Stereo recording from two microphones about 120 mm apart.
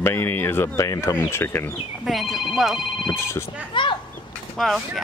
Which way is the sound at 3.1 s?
20° left (ahead or behind).